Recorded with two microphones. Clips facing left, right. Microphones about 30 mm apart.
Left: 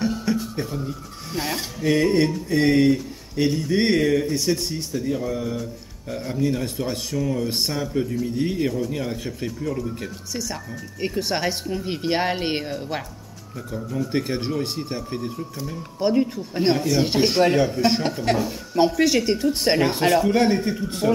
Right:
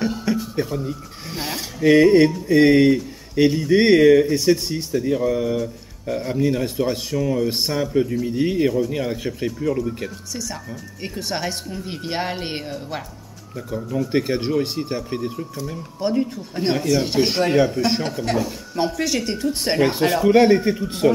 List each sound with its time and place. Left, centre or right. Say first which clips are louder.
0.0 s speech: right 1 dB; centre
11.0 s speech: left 3 dB; centre
13.6 s speech: right 3 dB; centre
20.2 s speech: right 5 dB; centre